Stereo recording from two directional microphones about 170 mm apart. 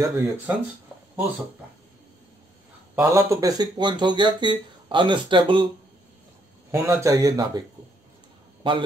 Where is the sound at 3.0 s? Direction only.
15° right (ahead or behind).